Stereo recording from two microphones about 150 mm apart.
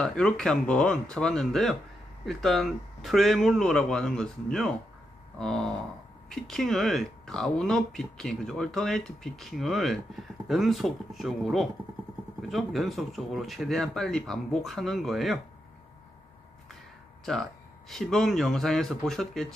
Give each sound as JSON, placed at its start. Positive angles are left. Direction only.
{"t": 0.0, "sound": "speech", "side_deg": 5}
{"t": 17.2, "sound": "speech", "side_deg": 0}